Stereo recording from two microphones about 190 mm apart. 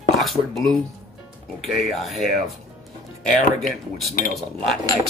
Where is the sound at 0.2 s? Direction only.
Centre (ahead or behind).